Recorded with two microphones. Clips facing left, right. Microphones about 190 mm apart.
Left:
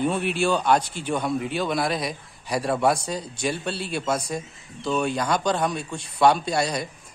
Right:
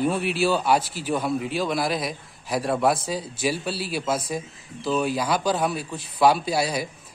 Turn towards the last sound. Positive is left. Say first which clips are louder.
# even
turn(degrees=-5)  # may be behind; listen again after turning